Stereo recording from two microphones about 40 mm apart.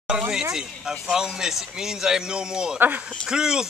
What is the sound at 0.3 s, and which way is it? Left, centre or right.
Speech, centre.